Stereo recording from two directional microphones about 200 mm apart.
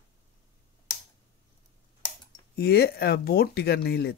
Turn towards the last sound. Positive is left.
turn(degrees=55)  # may be behind; listen again after turning